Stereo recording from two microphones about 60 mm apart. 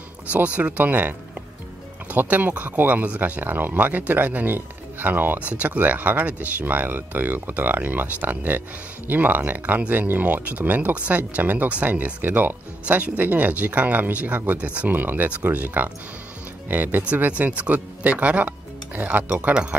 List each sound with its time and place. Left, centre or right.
0.3 s speech: right
2.1 s speech: right